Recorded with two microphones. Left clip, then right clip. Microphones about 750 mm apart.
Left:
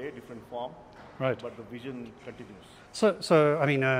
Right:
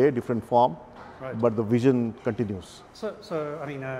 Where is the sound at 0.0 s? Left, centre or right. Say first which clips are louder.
Right 17 dB; right.